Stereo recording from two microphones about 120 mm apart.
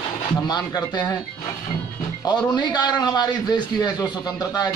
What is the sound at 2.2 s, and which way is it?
A man's voice, 35° left (ahead or behind).